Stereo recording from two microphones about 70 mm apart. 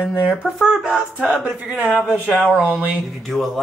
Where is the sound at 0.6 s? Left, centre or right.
Centre.